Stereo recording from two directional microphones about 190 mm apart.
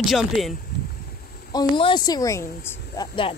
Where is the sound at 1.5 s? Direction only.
25° left (ahead or behind).